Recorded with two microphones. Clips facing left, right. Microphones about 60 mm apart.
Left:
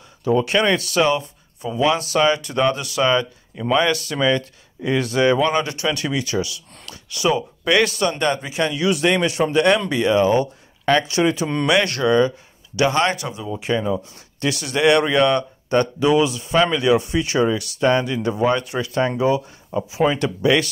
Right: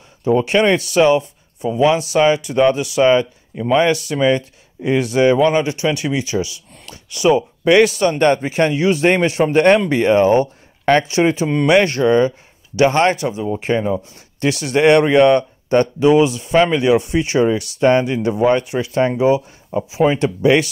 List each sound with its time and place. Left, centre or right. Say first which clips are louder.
0.2 s a man's voice: right 3 dB; right